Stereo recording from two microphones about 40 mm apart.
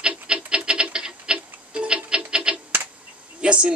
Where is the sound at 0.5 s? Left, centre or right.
Right.